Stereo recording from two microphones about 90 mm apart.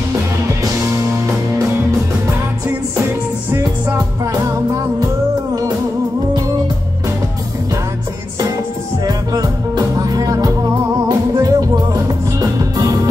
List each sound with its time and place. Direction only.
9.0 s music: 45° right (ahead or behind)